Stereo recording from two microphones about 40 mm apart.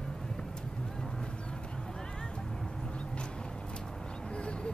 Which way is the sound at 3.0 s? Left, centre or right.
Left.